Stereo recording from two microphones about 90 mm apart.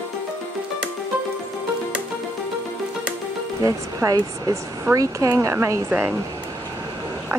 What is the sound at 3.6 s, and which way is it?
Speech, 40° right (ahead or behind).